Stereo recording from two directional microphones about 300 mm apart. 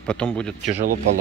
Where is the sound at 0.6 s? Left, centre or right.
Right.